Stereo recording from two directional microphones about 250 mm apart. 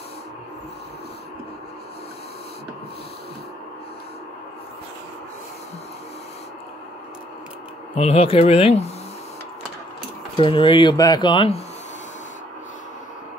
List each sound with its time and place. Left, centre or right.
7.9 s speech: left
10.3 s speech: centre